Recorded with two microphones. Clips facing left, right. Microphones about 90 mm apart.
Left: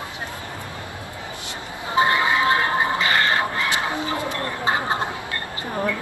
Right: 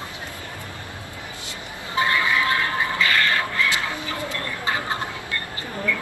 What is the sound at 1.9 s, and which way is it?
Music, 25° left (ahead or behind).